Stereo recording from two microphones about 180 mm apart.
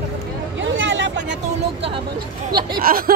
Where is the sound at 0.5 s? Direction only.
90° right.